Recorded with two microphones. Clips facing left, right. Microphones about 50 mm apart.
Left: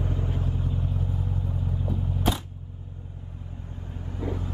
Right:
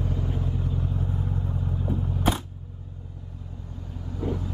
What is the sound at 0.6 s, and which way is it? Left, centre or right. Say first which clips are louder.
Vehicle: right 1 dB; left.